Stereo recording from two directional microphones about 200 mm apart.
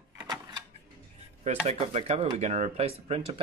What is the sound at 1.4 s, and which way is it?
Speech, 35° right (ahead or behind).